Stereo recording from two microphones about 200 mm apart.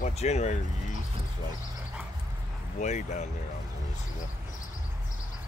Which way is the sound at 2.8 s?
35° left (ahead or behind).